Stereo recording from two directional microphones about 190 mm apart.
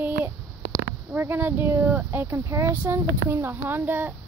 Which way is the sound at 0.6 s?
75° left (ahead or behind).